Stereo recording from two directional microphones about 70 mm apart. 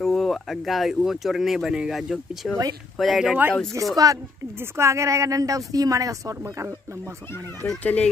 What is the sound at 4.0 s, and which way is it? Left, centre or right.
Speech, right.